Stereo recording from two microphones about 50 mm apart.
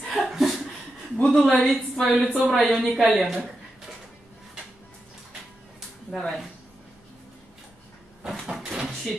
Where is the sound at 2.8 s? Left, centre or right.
Centre.